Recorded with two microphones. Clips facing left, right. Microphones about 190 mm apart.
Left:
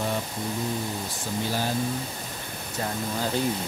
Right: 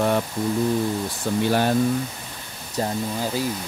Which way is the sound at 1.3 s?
65° right (ahead or behind).